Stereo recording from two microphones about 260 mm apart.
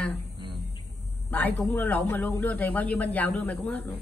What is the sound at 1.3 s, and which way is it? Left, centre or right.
A man's voice, centre.